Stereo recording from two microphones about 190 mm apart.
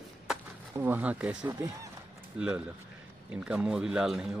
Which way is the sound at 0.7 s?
10° right (ahead or behind).